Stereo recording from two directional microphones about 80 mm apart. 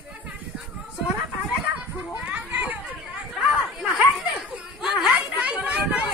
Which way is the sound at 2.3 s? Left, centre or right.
Right.